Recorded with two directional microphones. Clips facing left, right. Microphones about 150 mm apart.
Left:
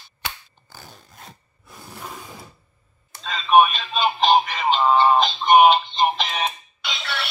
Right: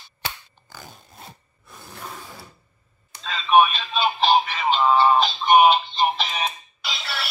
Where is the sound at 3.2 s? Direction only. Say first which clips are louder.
Left 1 dB; centre (ahead or behind).